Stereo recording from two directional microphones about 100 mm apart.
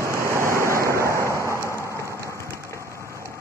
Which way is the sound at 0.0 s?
30° right (ahead or behind).